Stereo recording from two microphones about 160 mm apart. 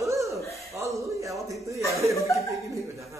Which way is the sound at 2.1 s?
20° left (ahead or behind).